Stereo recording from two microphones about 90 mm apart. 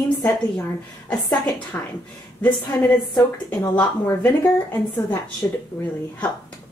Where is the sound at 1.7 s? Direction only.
25° left (ahead or behind).